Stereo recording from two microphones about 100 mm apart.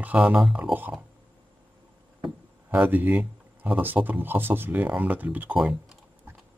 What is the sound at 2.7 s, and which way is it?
Speech, 20° right (ahead or behind).